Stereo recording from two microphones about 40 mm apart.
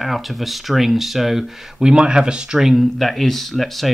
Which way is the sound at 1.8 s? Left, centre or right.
Centre.